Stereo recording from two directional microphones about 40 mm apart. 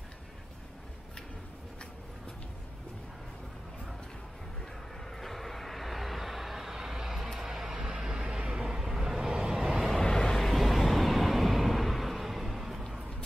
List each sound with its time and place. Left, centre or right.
5.1 s vehicle: centre
9.9 s vehicle: centre